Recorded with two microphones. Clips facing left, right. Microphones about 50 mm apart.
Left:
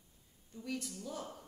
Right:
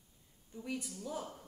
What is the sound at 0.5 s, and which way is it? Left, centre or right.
Speech, centre.